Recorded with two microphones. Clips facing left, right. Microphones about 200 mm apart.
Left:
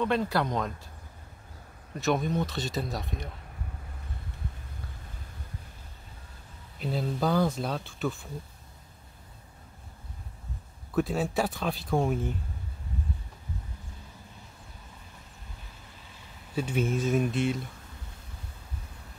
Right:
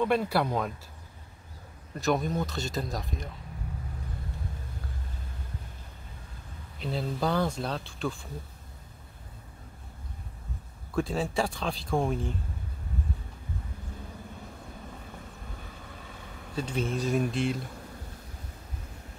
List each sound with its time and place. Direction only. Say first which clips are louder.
0.0 s speech: right 1 dB; 10° right (ahead or behind)
2.0 s speech: even; centre (ahead or behind)
6.8 s speech: left 1 dB; centre (ahead or behind)
11.0 s speech: left 1 dB; 5° left (ahead or behind)
16.0 s vehicle: right 6 dB; 55° right (ahead or behind)
17.0 s speech: right 1 dB; centre (ahead or behind)